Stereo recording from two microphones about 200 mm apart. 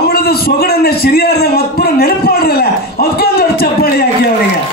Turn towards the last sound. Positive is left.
turn(degrees=50)  # may be behind; listen again after turning